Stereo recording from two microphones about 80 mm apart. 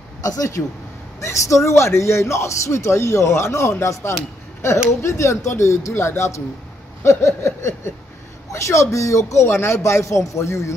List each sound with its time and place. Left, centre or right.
0.2 s speech: left
4.2 s a sound: left
5.0 s speech: left